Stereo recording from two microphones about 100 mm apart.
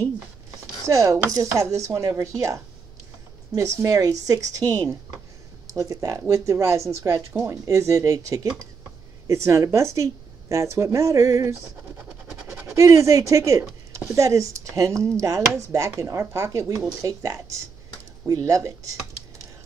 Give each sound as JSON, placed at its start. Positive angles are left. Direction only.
{"t": 0.8, "sound": "speech", "side_deg": -30}